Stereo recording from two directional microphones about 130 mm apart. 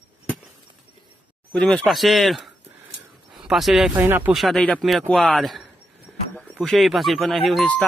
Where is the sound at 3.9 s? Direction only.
15° right (ahead or behind).